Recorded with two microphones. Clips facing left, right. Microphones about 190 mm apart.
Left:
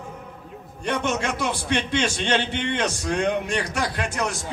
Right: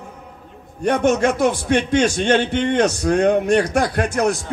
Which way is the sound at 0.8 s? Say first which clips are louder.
Right 9 dB; 45° right (ahead or behind).